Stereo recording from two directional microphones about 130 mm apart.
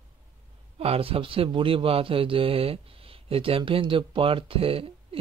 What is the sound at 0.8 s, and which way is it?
Speech, 50° right (ahead or behind).